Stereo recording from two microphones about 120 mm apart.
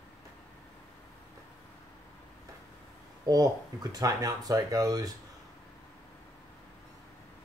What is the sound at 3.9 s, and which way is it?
Speech, 30° right (ahead or behind).